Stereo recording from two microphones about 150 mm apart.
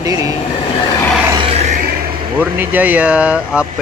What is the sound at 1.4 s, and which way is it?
Music, 45° right (ahead or behind).